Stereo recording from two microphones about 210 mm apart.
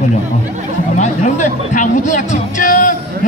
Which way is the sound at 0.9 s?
35° left (ahead or behind).